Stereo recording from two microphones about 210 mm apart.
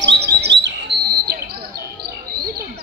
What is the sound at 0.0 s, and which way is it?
Bird, 55° right (ahead or behind).